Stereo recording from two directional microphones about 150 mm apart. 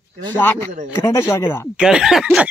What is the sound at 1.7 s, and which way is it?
Speech, 5° right (ahead or behind).